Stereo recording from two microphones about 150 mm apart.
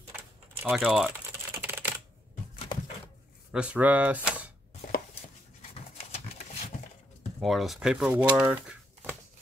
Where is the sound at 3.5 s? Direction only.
10° right (ahead or behind).